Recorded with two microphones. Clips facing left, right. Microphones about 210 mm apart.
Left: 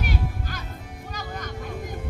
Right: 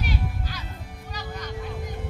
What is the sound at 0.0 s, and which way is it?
Music, 50° left (ahead or behind).